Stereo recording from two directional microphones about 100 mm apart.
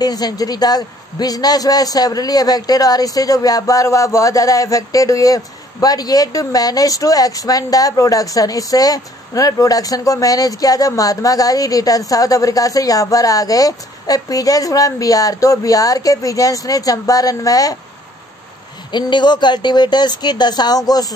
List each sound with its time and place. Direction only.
0.0 s a man's voice: 40° left (ahead or behind)
18.9 s speech: 50° left (ahead or behind)